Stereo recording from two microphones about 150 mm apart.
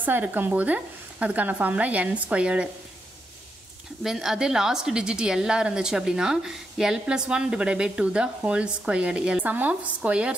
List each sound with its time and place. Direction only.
0.0 s speech: 10° right (ahead or behind)
4.0 s a woman's voice: 5° right (ahead or behind)